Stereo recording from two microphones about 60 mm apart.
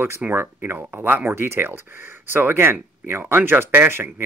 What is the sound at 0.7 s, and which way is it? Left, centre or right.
Speech, right.